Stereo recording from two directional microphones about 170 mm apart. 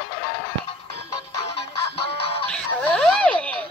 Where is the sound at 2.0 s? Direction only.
35° left (ahead or behind).